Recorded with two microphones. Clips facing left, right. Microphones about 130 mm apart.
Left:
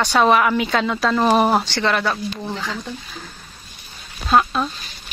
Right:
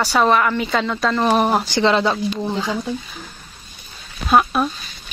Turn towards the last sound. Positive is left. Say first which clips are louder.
# right 1 dB
turn(degrees=-15)  # may be behind; listen again after turning